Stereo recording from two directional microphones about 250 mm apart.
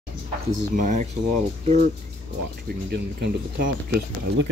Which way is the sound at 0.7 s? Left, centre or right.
Right.